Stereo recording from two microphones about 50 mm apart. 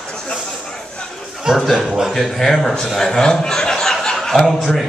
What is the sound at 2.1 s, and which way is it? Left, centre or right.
Speech, centre.